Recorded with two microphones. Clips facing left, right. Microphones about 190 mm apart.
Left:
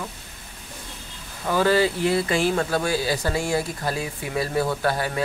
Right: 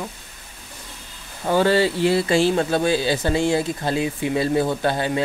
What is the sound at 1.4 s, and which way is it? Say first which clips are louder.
Speech: right 2 dB; 30° right (ahead or behind).